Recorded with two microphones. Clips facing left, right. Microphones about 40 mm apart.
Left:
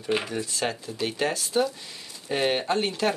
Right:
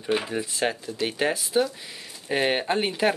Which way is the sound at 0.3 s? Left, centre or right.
Centre.